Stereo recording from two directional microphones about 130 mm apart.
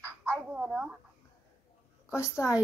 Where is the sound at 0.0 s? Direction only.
15° right (ahead or behind).